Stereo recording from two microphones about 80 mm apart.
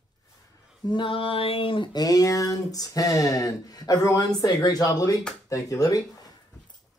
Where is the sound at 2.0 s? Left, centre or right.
Left.